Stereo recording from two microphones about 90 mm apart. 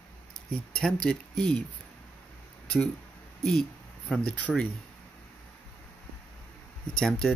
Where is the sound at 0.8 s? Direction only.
10° left (ahead or behind).